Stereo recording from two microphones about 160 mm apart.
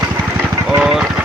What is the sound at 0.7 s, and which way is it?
Speech, 5° right (ahead or behind).